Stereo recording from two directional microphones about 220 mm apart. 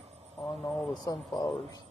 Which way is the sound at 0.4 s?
Centre (ahead or behind).